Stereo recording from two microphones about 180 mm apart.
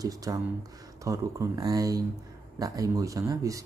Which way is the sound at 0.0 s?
20° right (ahead or behind).